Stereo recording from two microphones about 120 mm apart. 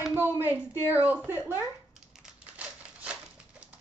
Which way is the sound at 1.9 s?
5° right (ahead or behind).